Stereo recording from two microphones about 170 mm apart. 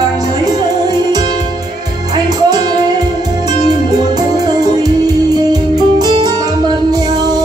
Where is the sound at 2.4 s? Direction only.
25° right (ahead or behind).